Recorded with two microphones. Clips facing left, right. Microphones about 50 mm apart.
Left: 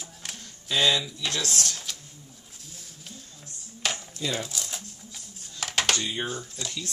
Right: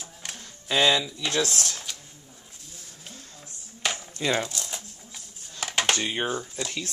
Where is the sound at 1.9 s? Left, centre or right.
Centre.